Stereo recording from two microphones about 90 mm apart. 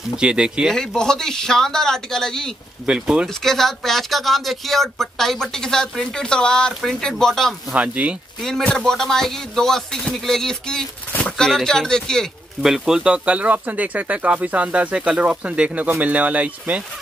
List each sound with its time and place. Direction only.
0.1 s speech: 10° right (ahead or behind)
0.7 s speech: 5° left (ahead or behind)
2.9 s speech: 10° right (ahead or behind)
3.3 s speech: 5° left (ahead or behind)
7.7 s speech: 15° right (ahead or behind)
8.4 s speech: 5° left (ahead or behind)
12.6 s speech: 5° right (ahead or behind)